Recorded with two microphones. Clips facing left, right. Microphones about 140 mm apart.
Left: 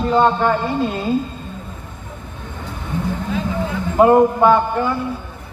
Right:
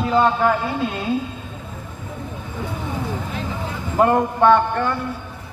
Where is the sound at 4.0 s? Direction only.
5° left (ahead or behind).